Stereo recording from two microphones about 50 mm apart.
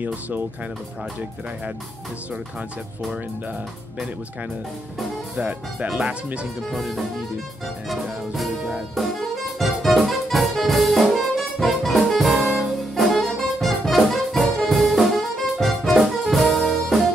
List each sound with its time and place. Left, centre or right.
5.4 s speech: right
6.7 s music: centre